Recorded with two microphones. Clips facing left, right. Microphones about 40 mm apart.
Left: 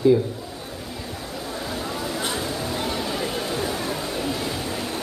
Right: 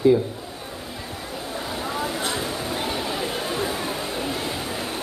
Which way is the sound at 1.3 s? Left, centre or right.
Centre.